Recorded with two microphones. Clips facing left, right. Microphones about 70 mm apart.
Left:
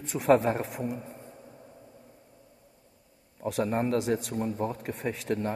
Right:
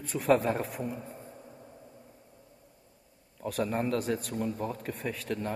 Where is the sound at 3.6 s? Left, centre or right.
Left.